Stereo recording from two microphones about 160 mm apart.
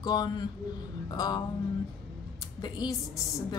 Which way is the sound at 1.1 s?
25° left (ahead or behind).